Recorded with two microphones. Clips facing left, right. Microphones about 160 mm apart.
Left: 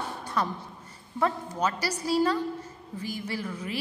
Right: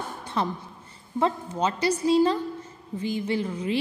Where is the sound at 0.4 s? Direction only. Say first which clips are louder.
Right 2 dB; 25° right (ahead or behind).